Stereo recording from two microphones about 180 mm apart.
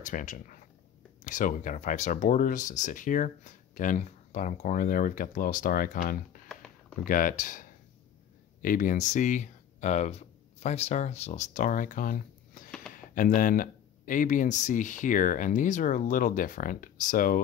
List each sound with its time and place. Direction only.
0.0 s speech: 45° left (ahead or behind)
6.5 s a sound: 5° left (ahead or behind)
7.0 s speech: 50° left (ahead or behind)
8.6 s speech: 50° left (ahead or behind)